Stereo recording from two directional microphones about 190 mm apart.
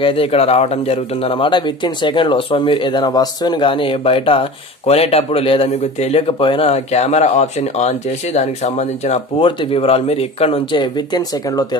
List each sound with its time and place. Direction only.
0.0 s speech: 30° left (ahead or behind)